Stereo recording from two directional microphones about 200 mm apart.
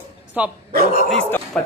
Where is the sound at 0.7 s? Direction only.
45° right (ahead or behind).